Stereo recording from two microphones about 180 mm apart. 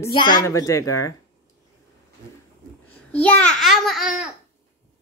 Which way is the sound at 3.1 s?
5° left (ahead or behind).